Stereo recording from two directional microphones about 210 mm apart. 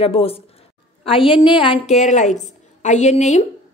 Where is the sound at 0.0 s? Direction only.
25° left (ahead or behind).